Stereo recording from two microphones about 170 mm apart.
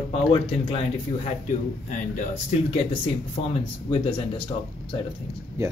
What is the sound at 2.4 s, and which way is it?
Speech, 30° left (ahead or behind).